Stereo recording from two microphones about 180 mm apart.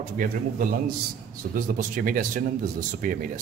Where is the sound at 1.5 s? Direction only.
50° right (ahead or behind).